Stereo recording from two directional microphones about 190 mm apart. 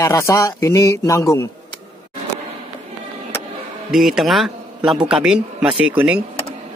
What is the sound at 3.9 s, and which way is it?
Speech, centre (ahead or behind).